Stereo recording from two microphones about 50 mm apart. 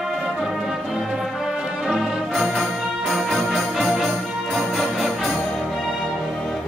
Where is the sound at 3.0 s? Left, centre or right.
Centre.